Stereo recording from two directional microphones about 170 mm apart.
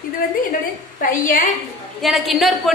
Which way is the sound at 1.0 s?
55° left (ahead or behind).